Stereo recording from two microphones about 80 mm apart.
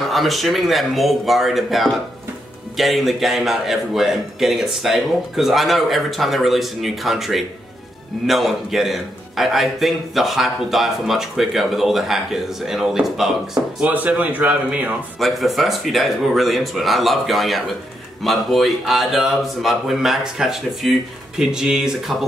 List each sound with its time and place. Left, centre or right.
0.1 s a man's voice: centre
13.7 s speech: centre
15.1 s a man's voice: centre